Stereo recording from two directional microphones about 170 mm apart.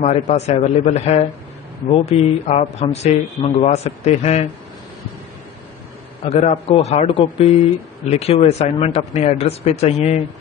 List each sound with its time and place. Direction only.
0.0 s speech: 40° left (ahead or behind)
6.2 s speech: 40° left (ahead or behind)